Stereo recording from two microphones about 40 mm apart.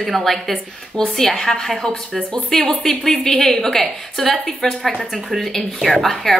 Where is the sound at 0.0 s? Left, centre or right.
Centre.